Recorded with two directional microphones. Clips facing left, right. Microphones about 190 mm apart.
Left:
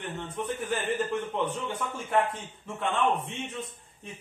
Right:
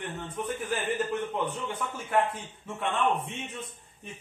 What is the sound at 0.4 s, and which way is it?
A man's voice, 5° right (ahead or behind).